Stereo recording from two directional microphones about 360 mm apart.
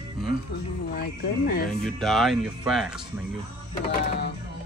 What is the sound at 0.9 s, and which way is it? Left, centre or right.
Speech, left.